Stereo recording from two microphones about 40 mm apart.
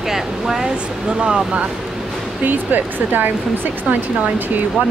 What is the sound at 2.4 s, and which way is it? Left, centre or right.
Speech, right.